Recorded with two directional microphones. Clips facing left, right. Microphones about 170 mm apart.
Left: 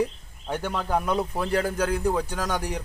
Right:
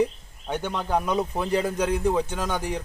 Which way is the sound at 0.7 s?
5° left (ahead or behind).